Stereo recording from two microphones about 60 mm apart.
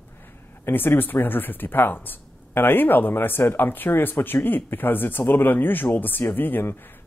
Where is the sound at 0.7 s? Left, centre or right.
Left.